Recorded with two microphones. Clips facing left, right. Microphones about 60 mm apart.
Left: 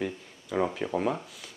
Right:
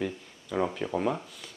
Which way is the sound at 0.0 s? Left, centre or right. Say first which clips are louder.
Even; centre.